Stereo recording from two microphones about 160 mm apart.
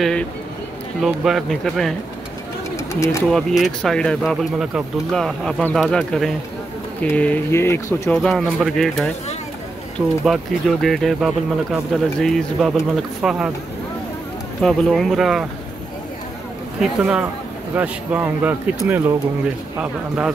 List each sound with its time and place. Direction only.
0.0 s speech: 5° left (ahead or behind)
2.9 s speech: 20° left (ahead or behind)
3.3 s speech: centre (ahead or behind)
8.1 s speech: 5° left (ahead or behind)
14.6 s speech: 5° left (ahead or behind)
16.8 s speech: 5° right (ahead or behind)